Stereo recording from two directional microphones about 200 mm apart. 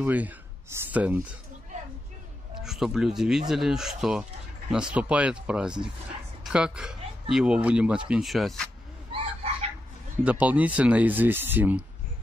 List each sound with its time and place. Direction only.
0.0 s speech: 10° right (ahead or behind)
2.6 s speech: centre (ahead or behind)
9.1 s frog: 30° right (ahead or behind)
10.2 s speech: 5° right (ahead or behind)